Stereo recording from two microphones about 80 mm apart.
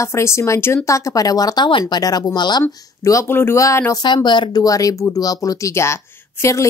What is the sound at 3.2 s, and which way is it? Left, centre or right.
Speech, left.